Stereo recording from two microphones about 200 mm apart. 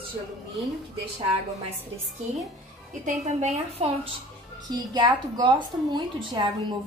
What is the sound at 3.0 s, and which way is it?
Speech, 35° right (ahead or behind).